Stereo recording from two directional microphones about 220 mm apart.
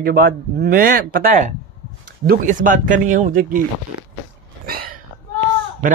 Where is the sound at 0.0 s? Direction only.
40° right (ahead or behind).